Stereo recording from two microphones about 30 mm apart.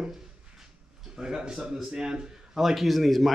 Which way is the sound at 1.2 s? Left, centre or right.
Right.